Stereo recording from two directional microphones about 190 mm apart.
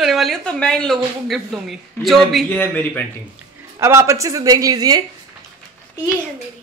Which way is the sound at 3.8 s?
15° right (ahead or behind).